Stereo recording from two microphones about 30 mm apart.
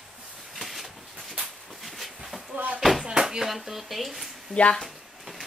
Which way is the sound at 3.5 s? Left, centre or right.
Centre.